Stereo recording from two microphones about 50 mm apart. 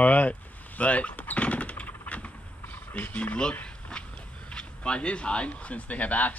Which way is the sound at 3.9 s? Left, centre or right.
Centre.